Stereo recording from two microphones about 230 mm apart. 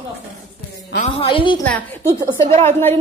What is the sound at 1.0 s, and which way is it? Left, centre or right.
Speech, left.